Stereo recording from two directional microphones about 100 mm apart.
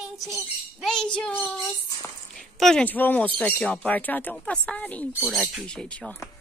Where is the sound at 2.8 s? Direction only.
15° left (ahead or behind).